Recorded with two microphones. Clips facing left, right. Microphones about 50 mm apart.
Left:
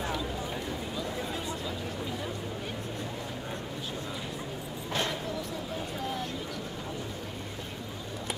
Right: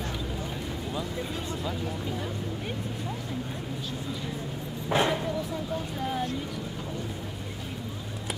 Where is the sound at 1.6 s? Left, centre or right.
Centre.